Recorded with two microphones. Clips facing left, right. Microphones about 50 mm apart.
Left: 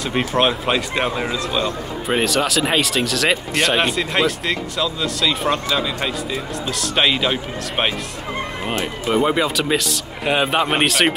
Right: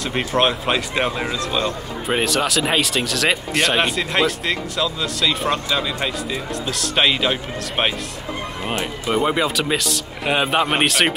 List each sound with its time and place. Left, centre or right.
0.0 s speech: centre
9.0 s speech: centre